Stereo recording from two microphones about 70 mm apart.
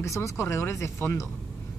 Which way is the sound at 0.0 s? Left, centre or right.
Left.